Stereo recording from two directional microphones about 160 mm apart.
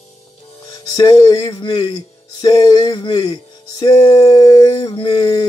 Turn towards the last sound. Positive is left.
turn(degrees=25)  # may be behind; listen again after turning